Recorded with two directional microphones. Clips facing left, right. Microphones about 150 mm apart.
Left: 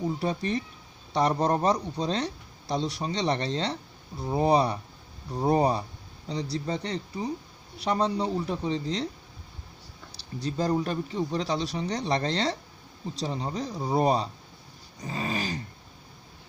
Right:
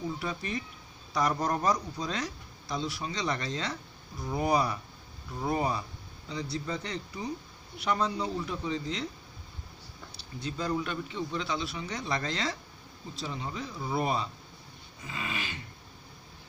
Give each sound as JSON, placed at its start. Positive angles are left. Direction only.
{"t": 0.2, "sound": "a man's voice", "side_deg": 35}
{"t": 10.1, "sound": "a man's voice", "side_deg": 35}